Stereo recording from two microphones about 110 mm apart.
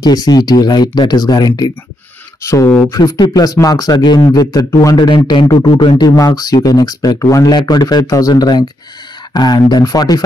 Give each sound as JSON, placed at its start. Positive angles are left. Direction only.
{"t": 0.0, "sound": "speech", "side_deg": 40}